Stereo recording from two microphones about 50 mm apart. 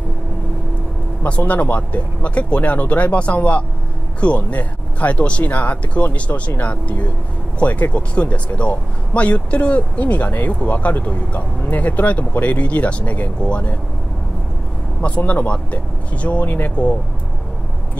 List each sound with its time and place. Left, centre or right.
1.2 s speech: left
15.0 s speech: left
16.4 s speech: left